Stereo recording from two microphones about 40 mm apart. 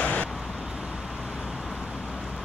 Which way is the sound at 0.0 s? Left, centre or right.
Left.